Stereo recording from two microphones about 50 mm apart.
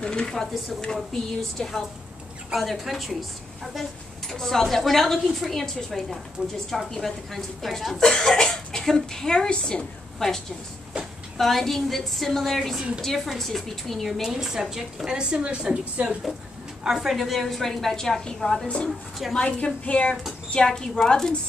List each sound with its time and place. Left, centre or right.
0.0 s a woman's voice: centre
10.1 s a woman's voice: centre
14.2 s a woman's voice: centre
16.8 s a woman's voice: centre
18.9 s a woman's voice: centre
19.3 s a woman's voice: left
20.5 s a woman's voice: centre